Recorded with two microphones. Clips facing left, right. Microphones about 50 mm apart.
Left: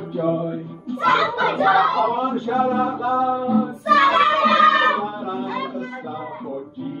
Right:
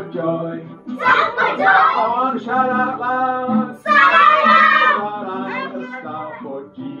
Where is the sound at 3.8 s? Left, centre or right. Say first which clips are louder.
Right 5 dB; right.